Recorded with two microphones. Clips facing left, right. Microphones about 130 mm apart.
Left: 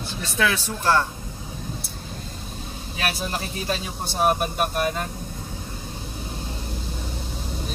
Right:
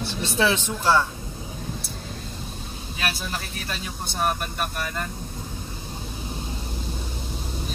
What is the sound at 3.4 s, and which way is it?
A man's voice, 20° left (ahead or behind).